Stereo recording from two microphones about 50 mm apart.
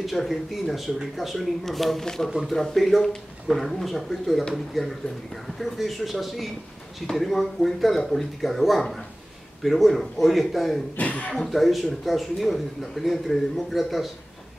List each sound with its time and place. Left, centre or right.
0.0 s speech: centre
11.0 s speech: left
11.3 s speech: centre